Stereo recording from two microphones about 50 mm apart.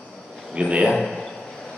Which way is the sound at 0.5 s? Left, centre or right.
Right.